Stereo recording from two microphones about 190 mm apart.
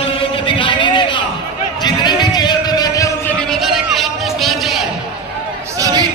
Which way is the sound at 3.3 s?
5° left (ahead or behind).